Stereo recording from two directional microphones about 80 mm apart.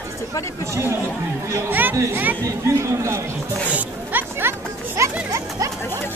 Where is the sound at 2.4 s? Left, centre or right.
Right.